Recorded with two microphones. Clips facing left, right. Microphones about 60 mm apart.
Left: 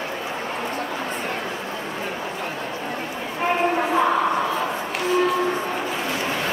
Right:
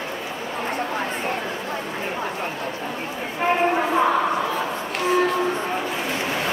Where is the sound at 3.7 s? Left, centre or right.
Centre.